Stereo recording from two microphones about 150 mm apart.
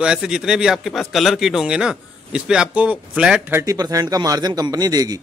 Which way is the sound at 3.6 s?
25° right (ahead or behind).